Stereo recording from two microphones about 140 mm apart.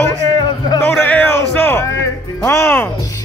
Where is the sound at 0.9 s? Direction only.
10° left (ahead or behind).